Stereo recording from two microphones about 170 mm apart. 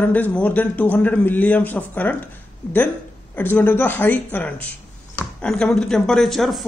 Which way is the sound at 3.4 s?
10° left (ahead or behind).